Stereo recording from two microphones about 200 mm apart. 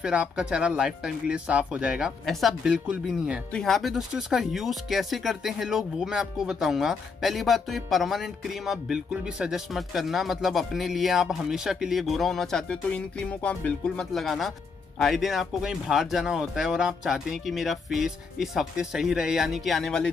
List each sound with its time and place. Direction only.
0.0 s speech: 5° right (ahead or behind)